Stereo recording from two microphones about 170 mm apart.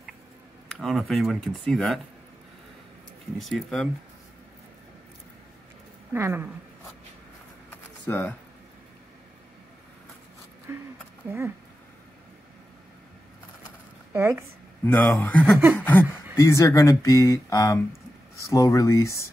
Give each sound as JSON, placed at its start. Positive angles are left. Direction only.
{"t": 0.7, "sound": "speech", "side_deg": 0}
{"t": 3.3, "sound": "speech", "side_deg": 0}
{"t": 6.1, "sound": "speech", "side_deg": -15}
{"t": 8.1, "sound": "speech", "side_deg": 10}
{"t": 11.2, "sound": "speech", "side_deg": -15}
{"t": 14.1, "sound": "speech", "side_deg": -15}
{"t": 14.9, "sound": "speech", "side_deg": 10}